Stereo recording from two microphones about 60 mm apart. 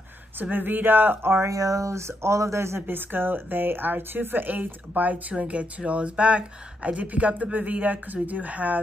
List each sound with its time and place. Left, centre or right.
0.4 s speech: right
1.5 s speech: right
2.9 s speech: right